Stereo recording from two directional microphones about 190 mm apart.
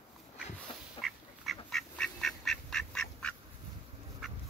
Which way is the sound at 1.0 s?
Centre (ahead or behind).